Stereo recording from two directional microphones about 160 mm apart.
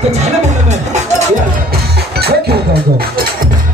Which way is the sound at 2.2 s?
80° right.